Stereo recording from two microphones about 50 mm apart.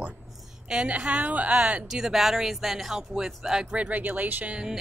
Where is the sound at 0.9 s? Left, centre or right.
Centre.